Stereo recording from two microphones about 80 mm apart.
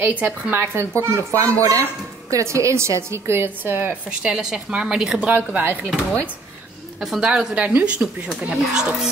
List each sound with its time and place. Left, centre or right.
0.0 s a woman's voice: right
0.6 s a woman's voice: right
4.2 s speech: centre
5.2 s a woman's voice: centre
7.0 s speech: centre